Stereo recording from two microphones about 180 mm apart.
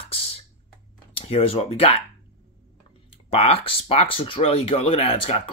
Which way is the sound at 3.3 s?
35° left (ahead or behind).